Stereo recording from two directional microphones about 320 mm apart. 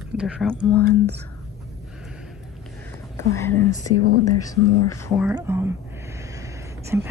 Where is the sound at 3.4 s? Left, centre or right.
Centre.